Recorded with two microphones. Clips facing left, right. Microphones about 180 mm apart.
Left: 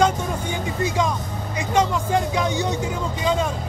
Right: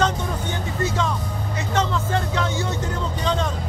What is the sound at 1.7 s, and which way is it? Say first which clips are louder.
Speech: left 3 dB; 15° left (ahead or behind).